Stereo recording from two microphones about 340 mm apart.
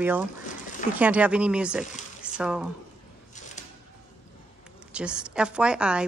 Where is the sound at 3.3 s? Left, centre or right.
Left.